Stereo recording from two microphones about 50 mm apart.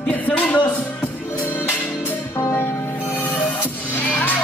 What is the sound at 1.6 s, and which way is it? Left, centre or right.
Music, left.